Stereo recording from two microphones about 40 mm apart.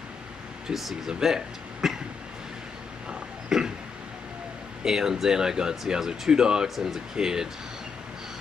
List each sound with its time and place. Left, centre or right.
0.7 s speech: centre
3.1 s pig: centre
4.8 s speech: centre